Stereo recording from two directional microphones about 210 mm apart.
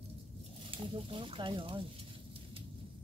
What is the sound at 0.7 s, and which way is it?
Speech, 25° right (ahead or behind).